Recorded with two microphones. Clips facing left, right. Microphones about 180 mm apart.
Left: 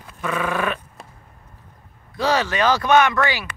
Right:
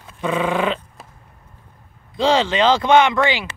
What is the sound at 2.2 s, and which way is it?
Speech, 25° right (ahead or behind).